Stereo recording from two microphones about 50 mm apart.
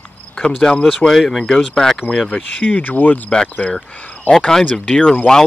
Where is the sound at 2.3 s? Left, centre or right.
Left.